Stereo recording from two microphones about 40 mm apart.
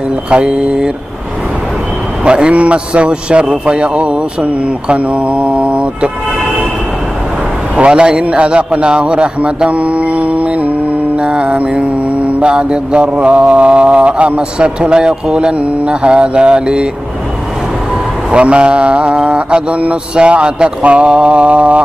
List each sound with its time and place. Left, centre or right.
0.3 s a man's voice: right
2.2 s a man's voice: right
7.7 s a man's voice: right
11.1 s mantra: right
12.4 s a man's voice: right
18.3 s a man's voice: right